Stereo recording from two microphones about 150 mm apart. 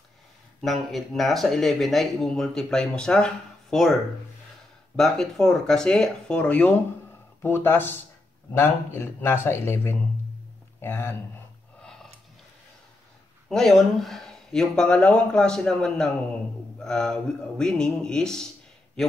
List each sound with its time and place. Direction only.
0.6 s speech: centre (ahead or behind)
4.9 s speech: centre (ahead or behind)
11.8 s a sound: 5° left (ahead or behind)
13.5 s speech: centre (ahead or behind)